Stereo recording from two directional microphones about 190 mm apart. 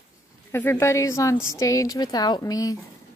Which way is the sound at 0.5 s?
15° left (ahead or behind).